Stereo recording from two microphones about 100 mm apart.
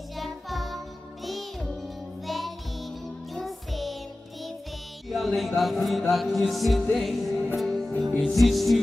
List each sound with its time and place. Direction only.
0.1 s music: centre (ahead or behind)
5.1 s a sound: centre (ahead or behind)
5.6 s music: centre (ahead or behind)